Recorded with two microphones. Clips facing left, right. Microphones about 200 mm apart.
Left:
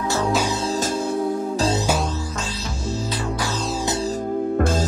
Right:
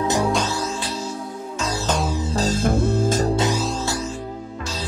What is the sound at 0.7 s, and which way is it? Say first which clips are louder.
Music: left 5 dB; 45° left (ahead or behind).